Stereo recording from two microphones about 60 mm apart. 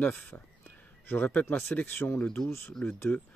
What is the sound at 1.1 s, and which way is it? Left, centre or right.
Speech, left.